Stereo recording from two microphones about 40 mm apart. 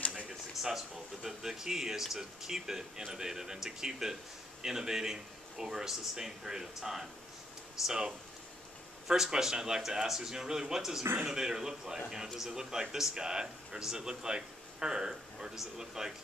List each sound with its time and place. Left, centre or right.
0.6 s speech: centre